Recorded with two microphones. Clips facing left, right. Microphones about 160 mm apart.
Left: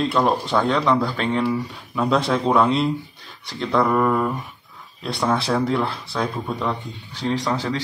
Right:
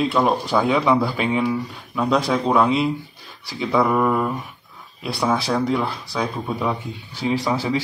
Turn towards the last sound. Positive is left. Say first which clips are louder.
# right 2 dB
turn(degrees=-10)  # may be behind; listen again after turning